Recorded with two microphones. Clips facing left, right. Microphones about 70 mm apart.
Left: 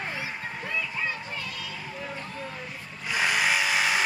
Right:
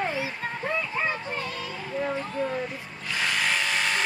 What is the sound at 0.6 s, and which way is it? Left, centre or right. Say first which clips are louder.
Speech: right 4 dB; right.